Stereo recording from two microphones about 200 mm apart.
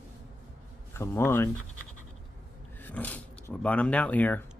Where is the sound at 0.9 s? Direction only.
15° left (ahead or behind).